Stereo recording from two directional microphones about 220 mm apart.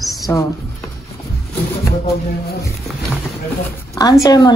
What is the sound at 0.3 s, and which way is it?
Speech, 10° left (ahead or behind).